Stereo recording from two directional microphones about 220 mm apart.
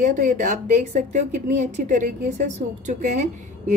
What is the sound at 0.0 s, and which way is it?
A woman's voice, 35° right (ahead or behind).